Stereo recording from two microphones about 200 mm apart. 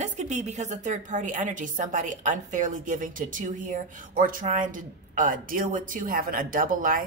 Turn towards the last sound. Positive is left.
turn(degrees=-45)  # may be behind; listen again after turning